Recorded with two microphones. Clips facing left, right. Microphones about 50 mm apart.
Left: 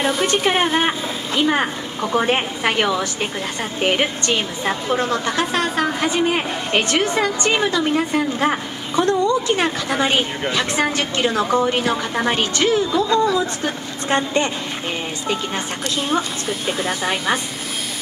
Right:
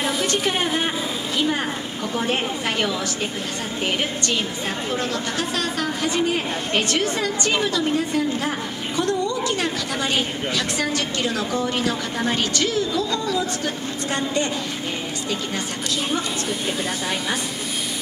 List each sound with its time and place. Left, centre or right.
0.2 s a woman's voice: left
0.7 s vehicle: left
2.1 s a woman's voice: left
7.9 s a woman's voice: left
17.0 s a woman's voice: left